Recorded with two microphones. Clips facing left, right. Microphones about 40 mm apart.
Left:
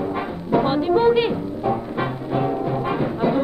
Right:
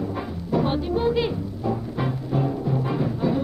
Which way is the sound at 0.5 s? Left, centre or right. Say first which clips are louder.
Left 5 dB; left.